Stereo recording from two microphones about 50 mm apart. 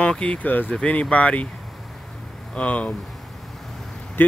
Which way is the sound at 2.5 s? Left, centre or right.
Left.